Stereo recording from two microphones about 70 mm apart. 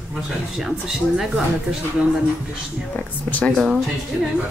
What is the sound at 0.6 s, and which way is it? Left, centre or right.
Speech, centre.